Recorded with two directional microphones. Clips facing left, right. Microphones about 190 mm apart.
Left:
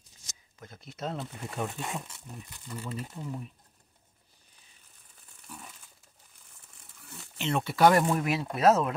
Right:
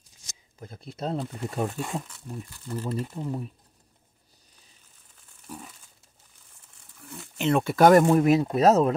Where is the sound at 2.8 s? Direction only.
40° right (ahead or behind).